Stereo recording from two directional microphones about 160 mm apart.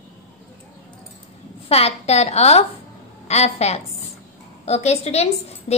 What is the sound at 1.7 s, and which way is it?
A child's voice, 40° left (ahead or behind).